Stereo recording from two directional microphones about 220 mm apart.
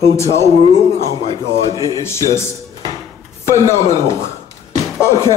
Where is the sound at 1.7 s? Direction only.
15° right (ahead or behind).